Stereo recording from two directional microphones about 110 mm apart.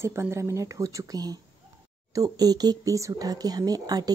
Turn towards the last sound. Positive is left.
turn(degrees=-35)  # may be behind; listen again after turning